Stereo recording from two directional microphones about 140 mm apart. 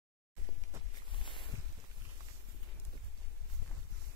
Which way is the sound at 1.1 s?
35° left (ahead or behind).